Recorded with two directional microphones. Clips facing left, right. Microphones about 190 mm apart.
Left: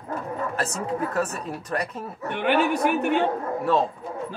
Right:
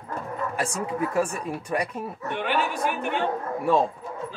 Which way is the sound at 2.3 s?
55° left (ahead or behind).